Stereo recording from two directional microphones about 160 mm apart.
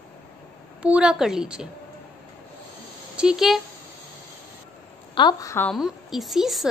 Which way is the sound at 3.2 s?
5° right (ahead or behind).